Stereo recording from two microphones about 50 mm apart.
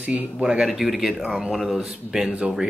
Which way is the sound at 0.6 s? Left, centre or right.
Centre.